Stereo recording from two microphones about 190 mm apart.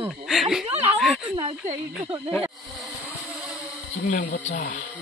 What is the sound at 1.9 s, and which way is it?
Vehicle, 5° right (ahead or behind).